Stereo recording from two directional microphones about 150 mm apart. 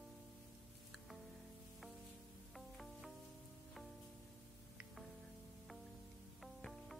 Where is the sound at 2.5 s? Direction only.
Centre (ahead or behind).